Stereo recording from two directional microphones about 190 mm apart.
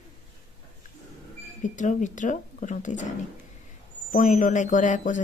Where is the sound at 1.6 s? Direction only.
40° left (ahead or behind).